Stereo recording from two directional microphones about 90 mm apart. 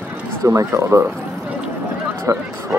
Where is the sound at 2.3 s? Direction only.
40° right (ahead or behind).